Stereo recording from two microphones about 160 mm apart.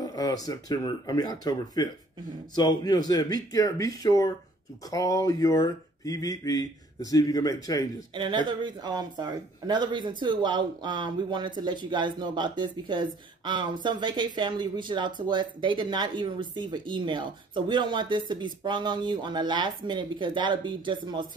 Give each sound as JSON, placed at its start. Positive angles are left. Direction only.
{"t": 0.0, "sound": "speech", "side_deg": 25}
{"t": 8.1, "sound": "speech", "side_deg": -30}